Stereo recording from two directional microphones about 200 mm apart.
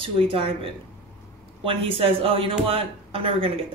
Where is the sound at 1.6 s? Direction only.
25° right (ahead or behind).